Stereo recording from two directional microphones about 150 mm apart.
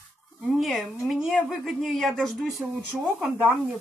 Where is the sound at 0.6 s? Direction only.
Centre (ahead or behind).